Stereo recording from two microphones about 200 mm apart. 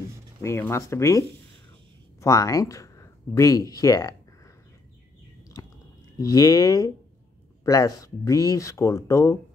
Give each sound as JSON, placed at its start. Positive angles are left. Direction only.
{"t": 0.4, "sound": "speech", "side_deg": 15}
{"t": 5.5, "sound": "a sound", "side_deg": 20}
{"t": 6.1, "sound": "speech", "side_deg": 15}